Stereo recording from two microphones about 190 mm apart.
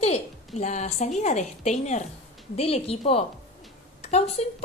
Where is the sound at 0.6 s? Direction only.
35° left (ahead or behind).